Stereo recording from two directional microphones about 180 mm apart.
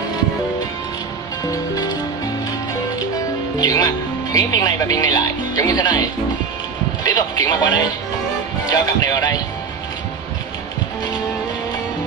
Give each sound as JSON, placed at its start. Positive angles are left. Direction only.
{"t": 1.4, "sound": "music", "side_deg": 20}
{"t": 3.5, "sound": "speech", "side_deg": 20}